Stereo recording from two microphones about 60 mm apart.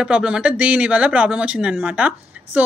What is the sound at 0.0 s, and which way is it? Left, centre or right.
Speech, centre.